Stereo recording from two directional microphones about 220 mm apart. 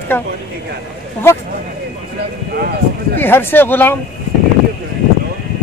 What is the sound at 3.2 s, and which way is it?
Speech, 10° left (ahead or behind).